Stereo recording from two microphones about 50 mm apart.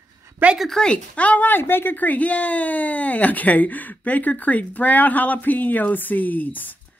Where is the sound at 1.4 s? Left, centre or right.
Left.